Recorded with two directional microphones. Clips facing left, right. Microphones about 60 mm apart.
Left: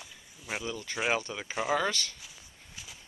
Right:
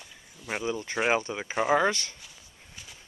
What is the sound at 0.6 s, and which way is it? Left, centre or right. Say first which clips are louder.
Speech: right 5 dB; centre.